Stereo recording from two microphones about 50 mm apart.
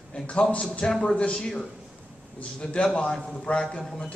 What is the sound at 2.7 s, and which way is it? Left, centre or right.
Speech, left.